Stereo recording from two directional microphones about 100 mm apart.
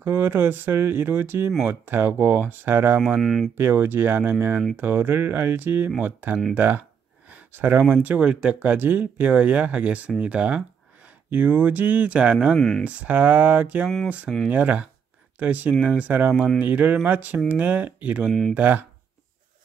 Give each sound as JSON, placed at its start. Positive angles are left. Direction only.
{"t": 0.0, "sound": "speech", "side_deg": -20}
{"t": 3.2, "sound": "speech", "side_deg": 0}
{"t": 3.5, "sound": "speech", "side_deg": -25}
{"t": 7.2, "sound": "a sound", "side_deg": -15}
{"t": 7.9, "sound": "speech", "side_deg": -15}
{"t": 12.5, "sound": "speech", "side_deg": 5}
{"t": 13.0, "sound": "speech", "side_deg": -15}